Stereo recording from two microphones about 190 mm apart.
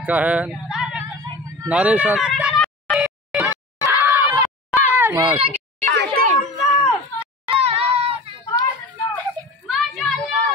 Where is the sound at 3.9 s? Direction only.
10° right (ahead or behind).